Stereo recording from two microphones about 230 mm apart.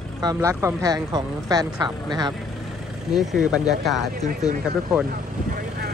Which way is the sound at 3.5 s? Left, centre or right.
Centre.